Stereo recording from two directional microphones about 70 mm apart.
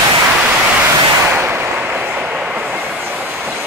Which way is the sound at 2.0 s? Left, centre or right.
Right.